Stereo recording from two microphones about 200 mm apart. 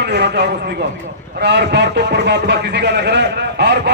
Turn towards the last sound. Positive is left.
turn(degrees=-55)  # may be behind; listen again after turning